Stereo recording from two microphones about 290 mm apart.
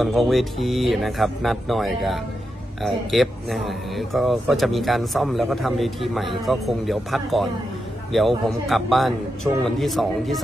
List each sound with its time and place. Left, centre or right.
0.0 s speech: centre